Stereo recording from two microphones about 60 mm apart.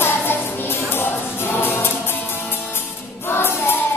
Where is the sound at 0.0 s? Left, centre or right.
Left.